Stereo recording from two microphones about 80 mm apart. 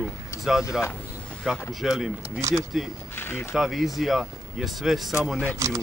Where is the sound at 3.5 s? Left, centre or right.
Centre.